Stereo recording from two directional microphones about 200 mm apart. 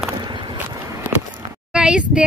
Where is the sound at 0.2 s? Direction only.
25° right (ahead or behind).